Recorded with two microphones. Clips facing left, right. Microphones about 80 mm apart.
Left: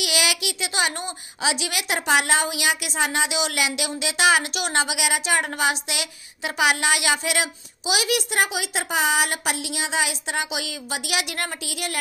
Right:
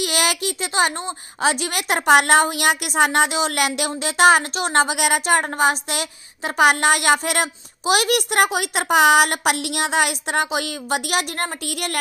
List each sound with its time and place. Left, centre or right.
0.0 s a child's voice: right
1.4 s speech: right